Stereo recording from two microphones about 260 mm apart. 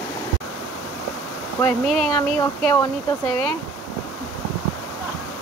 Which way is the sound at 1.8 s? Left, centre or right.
Centre.